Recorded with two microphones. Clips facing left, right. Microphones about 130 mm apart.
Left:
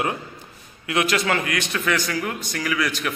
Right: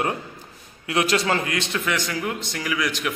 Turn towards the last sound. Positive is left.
turn(degrees=-20)  # may be behind; listen again after turning